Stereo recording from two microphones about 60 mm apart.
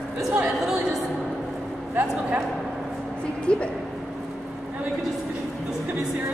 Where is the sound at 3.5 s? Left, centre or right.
Centre.